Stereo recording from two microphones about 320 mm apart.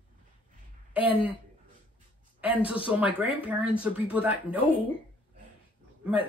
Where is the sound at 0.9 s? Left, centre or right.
Centre.